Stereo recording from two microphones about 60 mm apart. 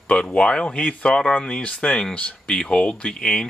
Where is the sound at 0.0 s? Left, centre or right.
Centre.